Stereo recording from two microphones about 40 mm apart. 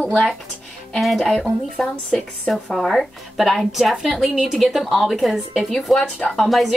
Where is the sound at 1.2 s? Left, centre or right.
Centre.